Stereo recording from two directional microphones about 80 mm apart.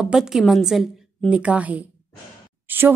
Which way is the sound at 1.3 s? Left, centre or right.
Centre.